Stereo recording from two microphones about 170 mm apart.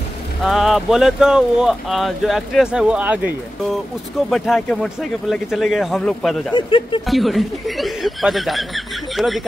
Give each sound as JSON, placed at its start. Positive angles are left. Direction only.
{"t": 0.4, "sound": "speech", "side_deg": 0}
{"t": 4.3, "sound": "speech", "side_deg": 0}
{"t": 6.5, "sound": "speech", "side_deg": 30}
{"t": 7.1, "sound": "speech", "side_deg": 0}